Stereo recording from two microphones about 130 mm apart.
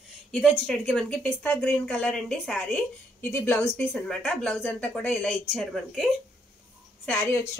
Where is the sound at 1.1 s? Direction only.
15° left (ahead or behind).